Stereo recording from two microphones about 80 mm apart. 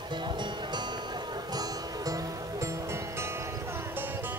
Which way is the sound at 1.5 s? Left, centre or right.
Right.